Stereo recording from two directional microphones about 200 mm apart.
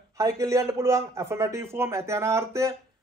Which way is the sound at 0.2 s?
15° right (ahead or behind).